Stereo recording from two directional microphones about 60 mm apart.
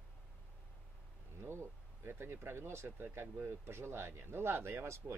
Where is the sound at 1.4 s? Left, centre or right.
Right.